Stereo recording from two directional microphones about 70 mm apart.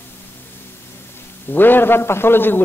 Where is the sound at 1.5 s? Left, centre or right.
Left.